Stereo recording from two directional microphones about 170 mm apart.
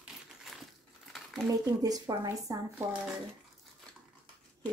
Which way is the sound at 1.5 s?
20° right (ahead or behind).